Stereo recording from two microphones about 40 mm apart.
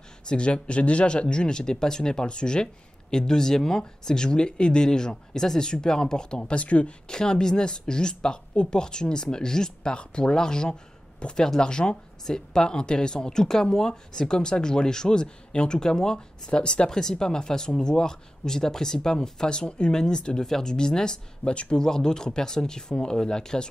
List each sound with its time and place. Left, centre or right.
0.3 s speech: left
7.1 s speech: centre
21.8 s speech: centre